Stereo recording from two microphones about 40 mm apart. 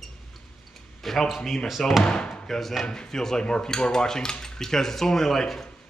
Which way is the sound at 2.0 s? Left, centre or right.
Left.